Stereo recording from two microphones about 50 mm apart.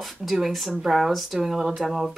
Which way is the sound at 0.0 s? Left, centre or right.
Centre.